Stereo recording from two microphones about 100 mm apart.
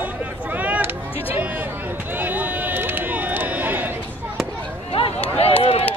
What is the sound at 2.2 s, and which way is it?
Run, 15° right (ahead or behind).